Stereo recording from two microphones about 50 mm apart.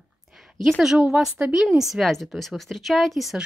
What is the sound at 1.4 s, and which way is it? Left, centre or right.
Speech, centre.